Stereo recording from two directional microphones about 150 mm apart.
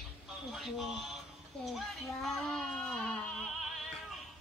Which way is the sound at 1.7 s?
Centre (ahead or behind).